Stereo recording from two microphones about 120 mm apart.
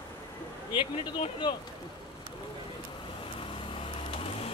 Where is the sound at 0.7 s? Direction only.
45° left (ahead or behind).